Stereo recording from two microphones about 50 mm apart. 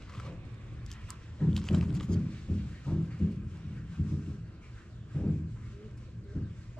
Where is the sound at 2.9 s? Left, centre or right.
Left.